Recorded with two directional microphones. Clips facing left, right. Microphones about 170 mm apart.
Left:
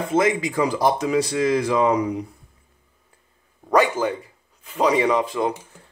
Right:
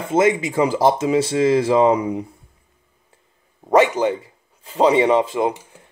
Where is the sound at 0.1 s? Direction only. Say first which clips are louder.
Right 4 dB; 25° right (ahead or behind).